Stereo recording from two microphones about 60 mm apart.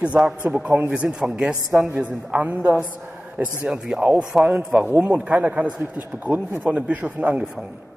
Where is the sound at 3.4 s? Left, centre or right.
Centre.